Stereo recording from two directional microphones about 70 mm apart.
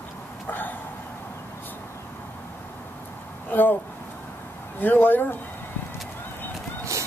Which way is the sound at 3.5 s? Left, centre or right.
Left.